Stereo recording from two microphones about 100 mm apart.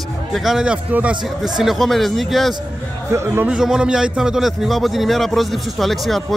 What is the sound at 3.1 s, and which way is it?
Speech, 25° right (ahead or behind).